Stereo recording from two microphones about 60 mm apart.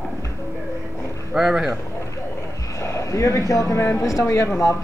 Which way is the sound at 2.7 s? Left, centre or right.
Left.